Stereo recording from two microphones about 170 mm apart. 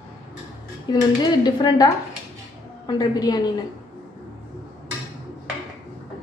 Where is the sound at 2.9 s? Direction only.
20° left (ahead or behind).